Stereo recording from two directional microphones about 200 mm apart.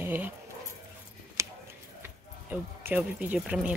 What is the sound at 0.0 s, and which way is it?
Keys jangling, 10° right (ahead or behind).